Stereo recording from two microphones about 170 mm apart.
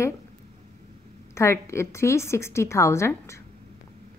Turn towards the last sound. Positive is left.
turn(degrees=15)  # may be behind; listen again after turning